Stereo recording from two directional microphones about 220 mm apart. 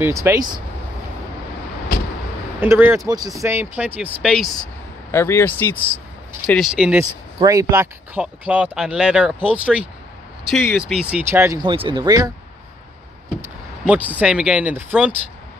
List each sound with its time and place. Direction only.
0.0 s speech: 15° right (ahead or behind)
2.6 s speech: 10° right (ahead or behind)
5.1 s speech: 10° left (ahead or behind); by 12.3 s 20° right (ahead or behind)
13.4 s speech: 5° right (ahead or behind)